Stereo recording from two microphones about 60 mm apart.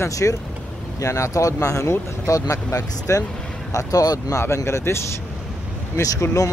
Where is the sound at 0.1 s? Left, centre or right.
Left.